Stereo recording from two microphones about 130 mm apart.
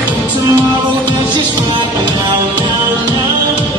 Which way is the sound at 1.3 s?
35° right (ahead or behind).